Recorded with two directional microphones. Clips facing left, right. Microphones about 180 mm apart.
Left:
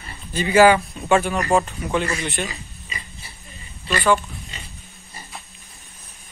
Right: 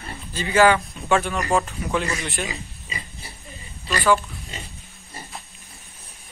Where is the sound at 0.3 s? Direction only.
15° left (ahead or behind); by 2.4 s centre (ahead or behind).